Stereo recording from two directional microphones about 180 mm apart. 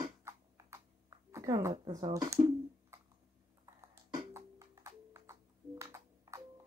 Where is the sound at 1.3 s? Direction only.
15° right (ahead or behind).